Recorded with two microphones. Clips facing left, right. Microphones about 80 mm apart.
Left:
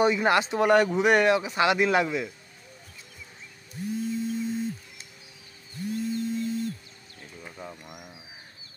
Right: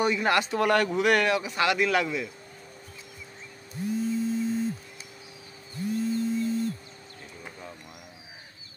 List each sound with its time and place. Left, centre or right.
0.0 s speech: centre
7.6 s bird: centre